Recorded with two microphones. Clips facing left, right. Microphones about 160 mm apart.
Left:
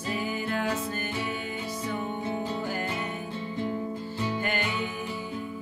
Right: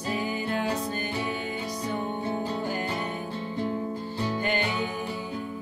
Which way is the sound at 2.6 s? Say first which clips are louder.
Right 1 dB; 30° right (ahead or behind).